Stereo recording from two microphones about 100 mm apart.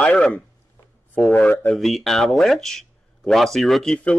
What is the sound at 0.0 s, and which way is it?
Speech, 10° left (ahead or behind).